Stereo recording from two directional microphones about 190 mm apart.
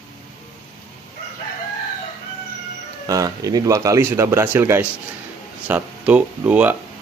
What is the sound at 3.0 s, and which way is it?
Speech, 20° right (ahead or behind).